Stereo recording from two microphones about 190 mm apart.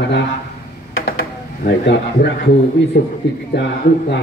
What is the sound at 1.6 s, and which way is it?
A man's voice, 60° left (ahead or behind).